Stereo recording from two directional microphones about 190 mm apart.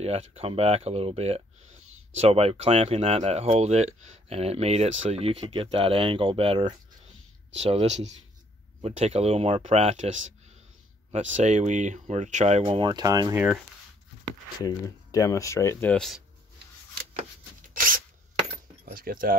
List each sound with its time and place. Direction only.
0.3 s speech: 30° right (ahead or behind)
14.6 s speech: 20° left (ahead or behind)
18.9 s speech: 50° right (ahead or behind)